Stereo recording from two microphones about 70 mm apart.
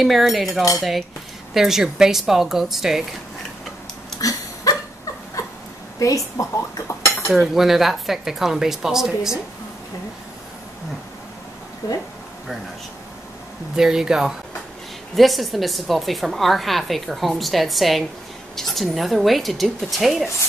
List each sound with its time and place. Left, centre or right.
0.0 s a woman's voice: centre
4.2 s dog: left
5.9 s a woman's voice: left
7.2 s a woman's voice: centre
11.8 s speech: left
13.7 s a woman's voice: centre